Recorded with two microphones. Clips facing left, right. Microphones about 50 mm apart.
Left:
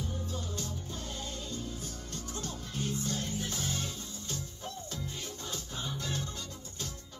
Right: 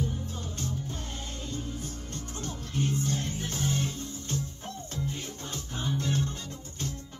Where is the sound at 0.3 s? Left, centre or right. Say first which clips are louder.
Right 2 dB; right.